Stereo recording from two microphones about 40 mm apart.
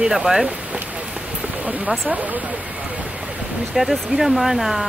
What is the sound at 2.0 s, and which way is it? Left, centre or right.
Speech, right.